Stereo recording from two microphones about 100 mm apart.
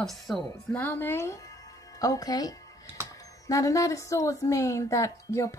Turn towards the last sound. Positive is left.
turn(degrees=30)  # may be behind; listen again after turning